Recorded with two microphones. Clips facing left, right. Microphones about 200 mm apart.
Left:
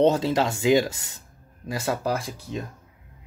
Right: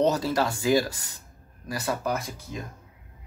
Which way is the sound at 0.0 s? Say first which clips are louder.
Left 3 dB; 25° left (ahead or behind).